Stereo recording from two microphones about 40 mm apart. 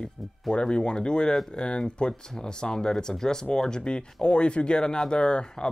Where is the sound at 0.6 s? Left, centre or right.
Left.